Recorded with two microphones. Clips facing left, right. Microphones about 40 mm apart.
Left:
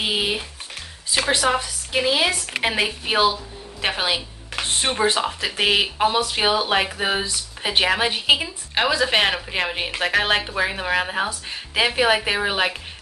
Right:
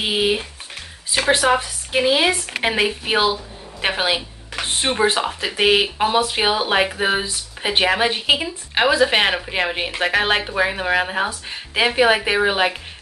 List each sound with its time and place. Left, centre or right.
0.0 s speech: centre